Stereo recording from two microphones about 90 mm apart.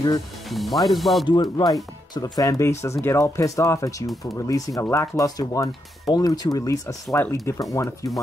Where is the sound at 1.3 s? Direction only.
55° left (ahead or behind); by 8.1 s 35° left (ahead or behind).